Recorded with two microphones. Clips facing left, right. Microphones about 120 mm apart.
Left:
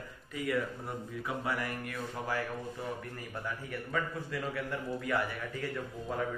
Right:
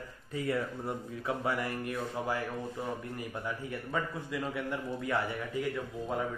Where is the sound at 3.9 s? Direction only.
20° right (ahead or behind).